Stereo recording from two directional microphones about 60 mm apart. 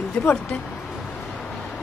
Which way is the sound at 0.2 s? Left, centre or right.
Left.